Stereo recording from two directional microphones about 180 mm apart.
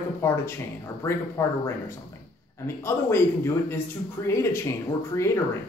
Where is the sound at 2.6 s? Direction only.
15° left (ahead or behind).